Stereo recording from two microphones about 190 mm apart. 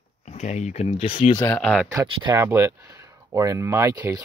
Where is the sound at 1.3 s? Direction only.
10° left (ahead or behind).